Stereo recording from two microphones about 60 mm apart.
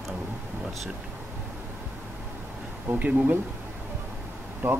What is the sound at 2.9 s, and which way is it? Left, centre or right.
Speech, right.